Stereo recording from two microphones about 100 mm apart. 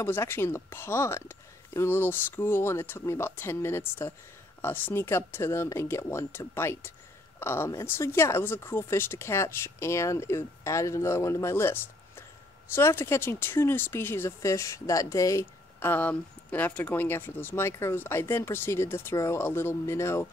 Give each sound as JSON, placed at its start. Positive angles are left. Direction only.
{"t": 0.0, "sound": "speech", "side_deg": 25}
{"t": 15.8, "sound": "speech", "side_deg": 15}